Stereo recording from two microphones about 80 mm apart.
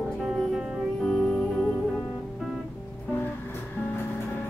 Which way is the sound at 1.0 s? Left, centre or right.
Centre.